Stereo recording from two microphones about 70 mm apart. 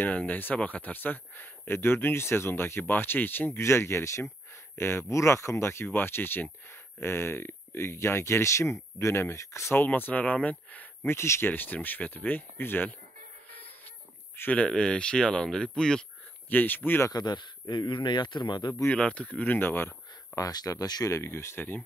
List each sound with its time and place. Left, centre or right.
0.0 s speech: left
9.8 s speech: left
11.1 s speech: left
11.5 s speech: left
14.5 s speech: centre
16.4 s speech: left
17.1 s speech: left
18.9 s speech: centre
20.3 s speech: left
21.1 s speech: left